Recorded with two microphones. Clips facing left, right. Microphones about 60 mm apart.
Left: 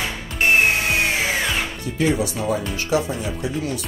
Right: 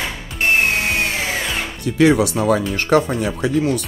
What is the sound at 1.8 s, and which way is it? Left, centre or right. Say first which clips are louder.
Speech: right 9 dB; right.